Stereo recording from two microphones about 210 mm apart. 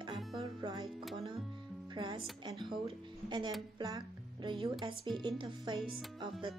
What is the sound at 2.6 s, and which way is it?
Speech, 20° right (ahead or behind).